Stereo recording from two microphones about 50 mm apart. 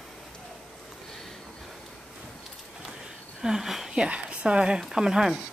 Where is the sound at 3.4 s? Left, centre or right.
Centre.